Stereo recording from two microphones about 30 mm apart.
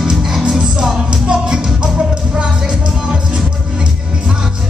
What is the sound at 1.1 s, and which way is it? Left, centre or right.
Music, right.